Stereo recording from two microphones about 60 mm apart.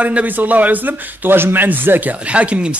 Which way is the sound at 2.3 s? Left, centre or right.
Right.